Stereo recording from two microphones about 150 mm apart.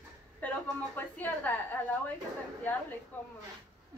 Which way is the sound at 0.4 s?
10° left (ahead or behind).